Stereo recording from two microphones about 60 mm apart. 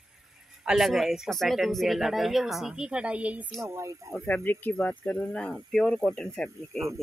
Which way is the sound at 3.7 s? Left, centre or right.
Right.